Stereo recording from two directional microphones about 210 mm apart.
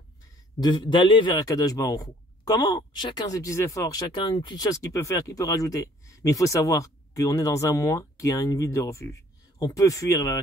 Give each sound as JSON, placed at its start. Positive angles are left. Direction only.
{"t": 0.6, "sound": "a man's voice", "side_deg": 20}